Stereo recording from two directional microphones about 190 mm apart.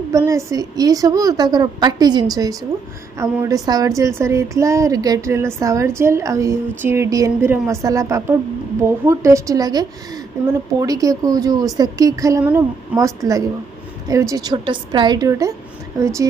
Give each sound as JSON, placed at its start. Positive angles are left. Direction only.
{"t": 0.1, "sound": "a woman's voice", "side_deg": -15}